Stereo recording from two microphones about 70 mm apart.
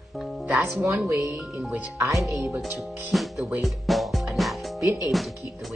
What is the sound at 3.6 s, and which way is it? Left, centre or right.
Music, centre.